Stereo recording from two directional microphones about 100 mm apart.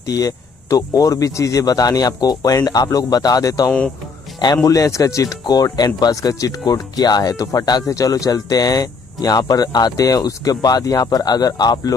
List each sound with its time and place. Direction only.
0.0 s speech: 35° left (ahead or behind)